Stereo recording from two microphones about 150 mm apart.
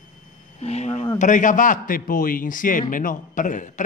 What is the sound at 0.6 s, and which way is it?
A man's voice, 45° left (ahead or behind).